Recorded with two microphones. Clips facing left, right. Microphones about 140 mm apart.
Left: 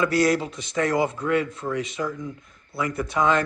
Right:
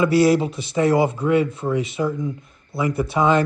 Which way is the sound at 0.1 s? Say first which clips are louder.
Right 5 dB; 25° right (ahead or behind).